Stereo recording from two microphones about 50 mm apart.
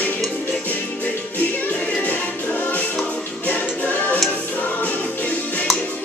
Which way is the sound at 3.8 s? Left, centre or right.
Left.